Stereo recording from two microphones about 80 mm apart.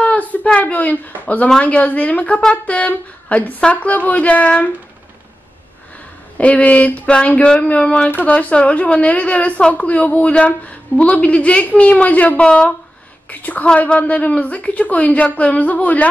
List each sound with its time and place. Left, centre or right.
0.0 s a sound: centre
1.6 s a woman's voice: centre
6.3 s speech: centre